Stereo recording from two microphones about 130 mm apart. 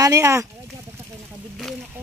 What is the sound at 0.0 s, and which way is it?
Speech, 25° right (ahead or behind).